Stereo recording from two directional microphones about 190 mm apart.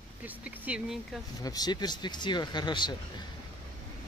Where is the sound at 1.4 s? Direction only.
20° left (ahead or behind).